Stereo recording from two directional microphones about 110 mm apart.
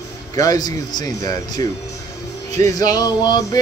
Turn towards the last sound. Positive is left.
turn(degrees=35)  # may be behind; listen again after turning